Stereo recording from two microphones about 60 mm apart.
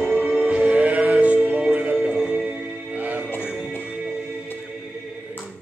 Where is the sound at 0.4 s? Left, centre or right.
Right.